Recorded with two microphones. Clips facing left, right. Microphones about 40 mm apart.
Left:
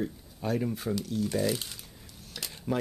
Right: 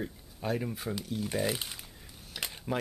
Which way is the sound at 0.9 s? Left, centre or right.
Centre.